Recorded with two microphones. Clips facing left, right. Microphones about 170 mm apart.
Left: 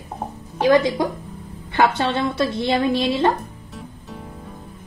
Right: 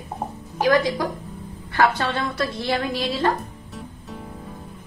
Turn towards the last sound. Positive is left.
turn(degrees=25)  # may be behind; listen again after turning